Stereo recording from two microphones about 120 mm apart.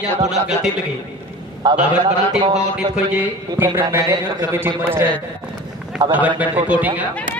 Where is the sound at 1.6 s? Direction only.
35° right (ahead or behind).